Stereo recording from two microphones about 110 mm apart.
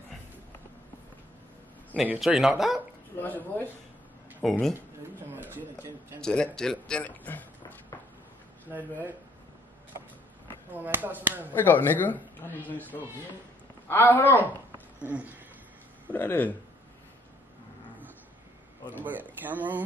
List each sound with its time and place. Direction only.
2.1 s speech: centre (ahead or behind)
3.2 s speech: 15° left (ahead or behind)
4.4 s speech: centre (ahead or behind)
4.7 s speech: 20° right (ahead or behind)
6.2 s speech: 5° left (ahead or behind)
8.6 s speech: 15° right (ahead or behind)
10.7 s speech: 15° right (ahead or behind)
11.5 s speech: 20° left (ahead or behind)
13.8 s speech: 20° left (ahead or behind)
15.0 s speech: 15° right (ahead or behind)
16.1 s speech: 15° left (ahead or behind)
19.0 s speech: 15° right (ahead or behind)